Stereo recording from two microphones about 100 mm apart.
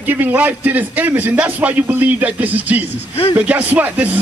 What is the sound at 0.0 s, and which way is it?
A man's voice, 20° right (ahead or behind).